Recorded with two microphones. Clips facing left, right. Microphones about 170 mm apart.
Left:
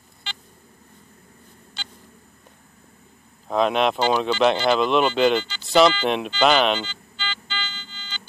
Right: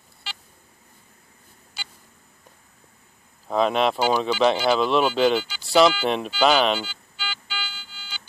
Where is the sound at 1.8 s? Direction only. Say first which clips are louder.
Even; 5° right (ahead or behind).